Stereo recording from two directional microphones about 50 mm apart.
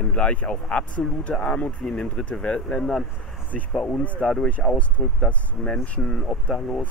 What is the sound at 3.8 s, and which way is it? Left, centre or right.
Speech, left.